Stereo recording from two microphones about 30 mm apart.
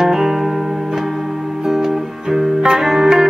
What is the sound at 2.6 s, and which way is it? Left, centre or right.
Music, centre.